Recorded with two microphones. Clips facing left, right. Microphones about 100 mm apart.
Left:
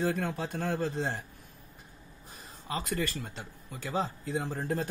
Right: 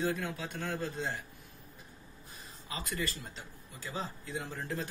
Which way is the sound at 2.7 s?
50° left (ahead or behind).